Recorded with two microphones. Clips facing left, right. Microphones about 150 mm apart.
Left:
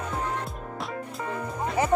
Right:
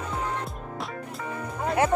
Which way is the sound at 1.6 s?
Centre (ahead or behind).